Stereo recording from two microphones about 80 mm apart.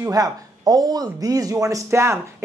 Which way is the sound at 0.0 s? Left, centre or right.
Right.